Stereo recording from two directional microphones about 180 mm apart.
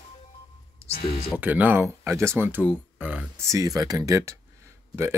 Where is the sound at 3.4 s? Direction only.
20° right (ahead or behind).